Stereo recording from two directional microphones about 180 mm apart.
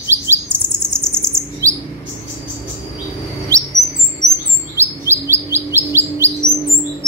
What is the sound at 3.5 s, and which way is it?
Bird, 15° right (ahead or behind).